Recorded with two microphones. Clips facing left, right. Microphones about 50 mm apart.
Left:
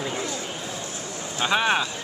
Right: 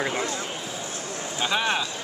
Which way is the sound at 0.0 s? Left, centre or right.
Right.